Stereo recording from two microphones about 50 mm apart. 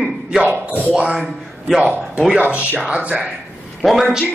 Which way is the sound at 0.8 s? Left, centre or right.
Right.